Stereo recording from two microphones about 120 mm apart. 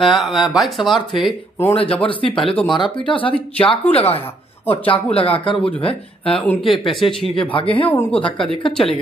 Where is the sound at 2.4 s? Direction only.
5° left (ahead or behind).